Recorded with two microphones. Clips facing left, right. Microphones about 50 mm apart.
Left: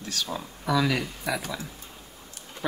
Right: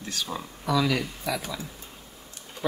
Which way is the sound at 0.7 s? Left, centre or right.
Centre.